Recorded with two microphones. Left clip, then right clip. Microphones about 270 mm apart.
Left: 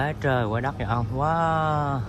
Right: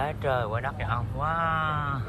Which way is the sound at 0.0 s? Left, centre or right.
Left.